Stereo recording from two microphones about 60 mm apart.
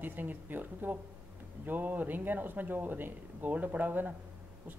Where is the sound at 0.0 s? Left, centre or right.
Right.